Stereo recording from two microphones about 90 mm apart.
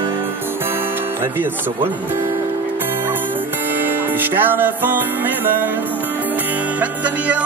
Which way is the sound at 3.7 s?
20° right (ahead or behind).